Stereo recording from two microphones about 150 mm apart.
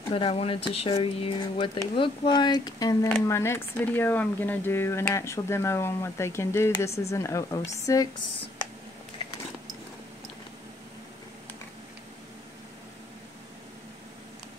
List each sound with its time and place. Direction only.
0.1 s a woman's voice: 40° left (ahead or behind); by 8.1 s 20° left (ahead or behind)